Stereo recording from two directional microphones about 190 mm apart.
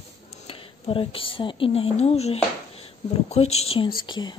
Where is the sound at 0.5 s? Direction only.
30° left (ahead or behind).